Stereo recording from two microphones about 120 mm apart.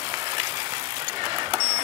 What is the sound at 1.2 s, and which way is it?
Vehicle, 35° right (ahead or behind).